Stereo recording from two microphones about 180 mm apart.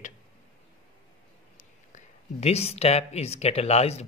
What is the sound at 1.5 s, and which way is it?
Speech, 40° left (ahead or behind).